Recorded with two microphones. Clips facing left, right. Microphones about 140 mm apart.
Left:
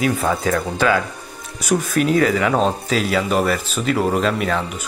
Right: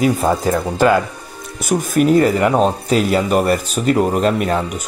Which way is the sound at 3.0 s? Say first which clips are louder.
Right 3 dB; 50° right (ahead or behind).